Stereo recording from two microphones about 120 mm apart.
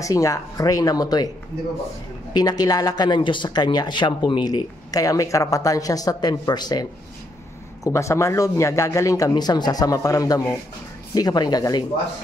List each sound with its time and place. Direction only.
0.0 s a man's voice: 25° left (ahead or behind)
2.3 s a man's voice: 35° left (ahead or behind)